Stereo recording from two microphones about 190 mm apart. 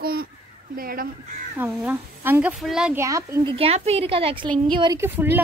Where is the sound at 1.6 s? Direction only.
10° right (ahead or behind).